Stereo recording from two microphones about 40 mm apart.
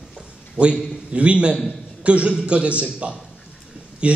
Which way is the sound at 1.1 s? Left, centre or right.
Right.